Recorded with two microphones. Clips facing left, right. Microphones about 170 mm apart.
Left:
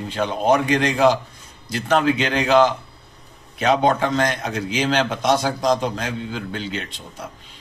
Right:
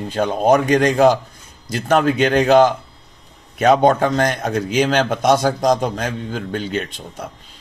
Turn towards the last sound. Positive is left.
turn(degrees=-45)  # may be behind; listen again after turning